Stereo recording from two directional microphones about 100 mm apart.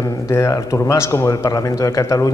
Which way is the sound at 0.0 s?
30° left (ahead or behind).